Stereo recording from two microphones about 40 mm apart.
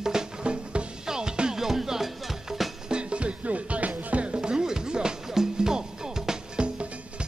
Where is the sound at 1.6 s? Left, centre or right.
Centre.